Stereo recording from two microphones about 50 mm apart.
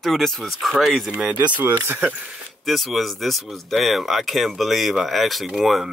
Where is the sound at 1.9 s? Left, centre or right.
Right.